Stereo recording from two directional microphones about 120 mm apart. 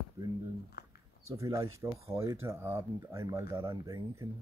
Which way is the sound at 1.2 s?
25° right (ahead or behind).